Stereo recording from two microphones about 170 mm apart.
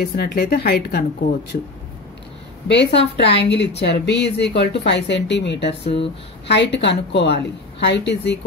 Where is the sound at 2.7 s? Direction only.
90° left.